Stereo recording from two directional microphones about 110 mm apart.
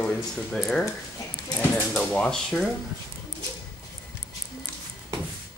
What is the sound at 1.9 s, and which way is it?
Speech, 5° left (ahead or behind).